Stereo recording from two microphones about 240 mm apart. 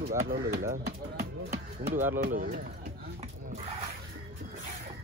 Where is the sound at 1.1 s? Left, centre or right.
Right.